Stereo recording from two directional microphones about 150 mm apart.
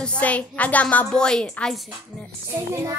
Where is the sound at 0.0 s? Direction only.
10° left (ahead or behind).